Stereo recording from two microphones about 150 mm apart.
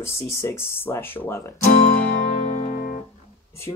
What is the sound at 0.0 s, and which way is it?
Speech, 20° left (ahead or behind).